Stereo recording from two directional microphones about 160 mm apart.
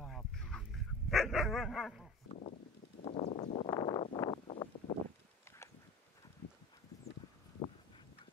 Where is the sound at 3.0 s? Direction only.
40° left (ahead or behind).